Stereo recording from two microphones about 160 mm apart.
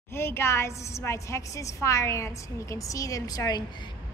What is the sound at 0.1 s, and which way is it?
A woman's voice, 15° left (ahead or behind).